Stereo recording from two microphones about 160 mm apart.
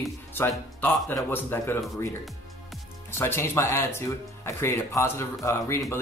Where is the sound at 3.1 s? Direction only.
15° left (ahead or behind).